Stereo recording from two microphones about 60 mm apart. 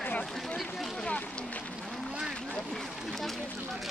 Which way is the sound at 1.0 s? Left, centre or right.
Left.